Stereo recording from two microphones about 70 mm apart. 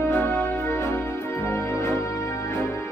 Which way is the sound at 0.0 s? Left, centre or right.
Left.